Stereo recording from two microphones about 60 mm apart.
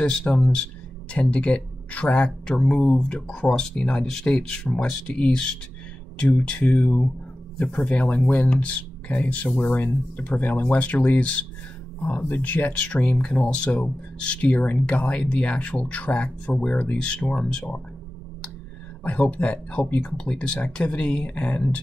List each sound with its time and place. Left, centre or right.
0.2 s speech: left
19.0 s speech: left